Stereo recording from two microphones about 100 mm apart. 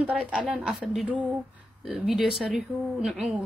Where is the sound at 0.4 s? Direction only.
5° right (ahead or behind).